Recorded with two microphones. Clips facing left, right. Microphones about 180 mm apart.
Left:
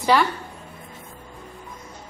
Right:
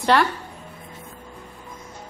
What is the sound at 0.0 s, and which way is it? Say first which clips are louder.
Speech: even; centre (ahead or behind).